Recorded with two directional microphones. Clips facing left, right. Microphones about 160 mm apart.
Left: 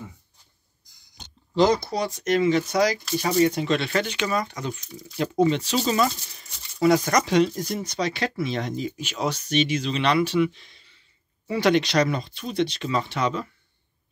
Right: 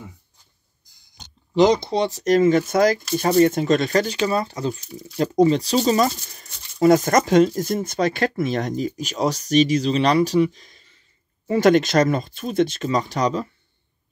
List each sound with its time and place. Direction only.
1.5 s speech: 15° right (ahead or behind); by 13.5 s 35° right (ahead or behind)